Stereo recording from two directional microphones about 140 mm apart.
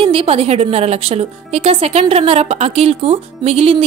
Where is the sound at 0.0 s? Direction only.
40° right (ahead or behind).